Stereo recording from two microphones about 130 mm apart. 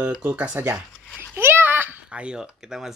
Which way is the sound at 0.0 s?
10° right (ahead or behind).